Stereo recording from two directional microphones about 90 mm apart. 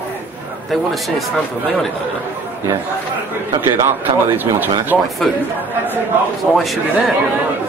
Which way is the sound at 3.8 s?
20° right (ahead or behind).